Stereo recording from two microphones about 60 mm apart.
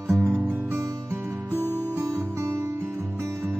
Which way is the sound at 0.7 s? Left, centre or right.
Right.